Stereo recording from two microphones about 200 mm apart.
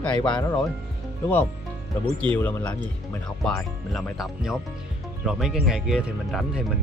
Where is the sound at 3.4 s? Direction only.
Centre (ahead or behind).